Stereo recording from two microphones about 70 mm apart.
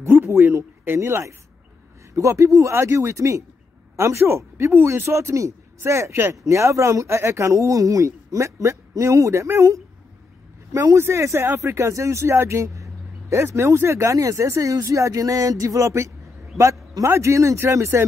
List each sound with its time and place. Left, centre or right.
0.1 s a man's voice: right
11.0 s speech: right
16.5 s speech: centre
17.0 s a man's voice: right